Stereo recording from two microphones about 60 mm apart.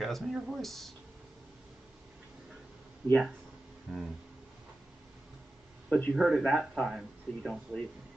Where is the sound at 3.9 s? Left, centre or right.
Centre.